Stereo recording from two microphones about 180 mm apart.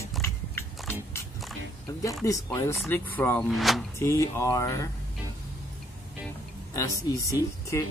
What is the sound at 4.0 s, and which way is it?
Speech, 15° left (ahead or behind).